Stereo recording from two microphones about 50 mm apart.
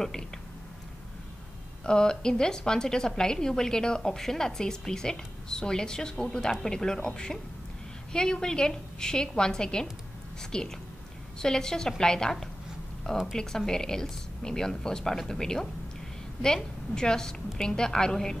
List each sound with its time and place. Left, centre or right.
1.9 s a woman's voice: centre